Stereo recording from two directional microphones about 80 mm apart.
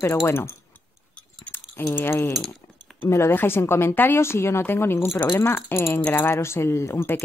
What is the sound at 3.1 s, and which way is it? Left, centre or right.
A woman's voice, left.